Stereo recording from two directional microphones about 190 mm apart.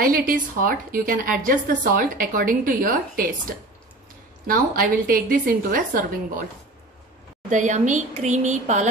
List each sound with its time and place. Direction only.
0.0 s a woman's voice: 50° right (ahead or behind)
4.5 s a woman's voice: 50° right (ahead or behind)
7.4 s a woman's voice: 40° right (ahead or behind)